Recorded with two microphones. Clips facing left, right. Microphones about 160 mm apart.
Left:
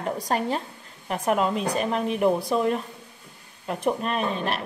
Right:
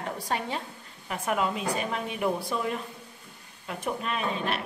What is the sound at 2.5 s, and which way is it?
A woman's voice, 35° left (ahead or behind).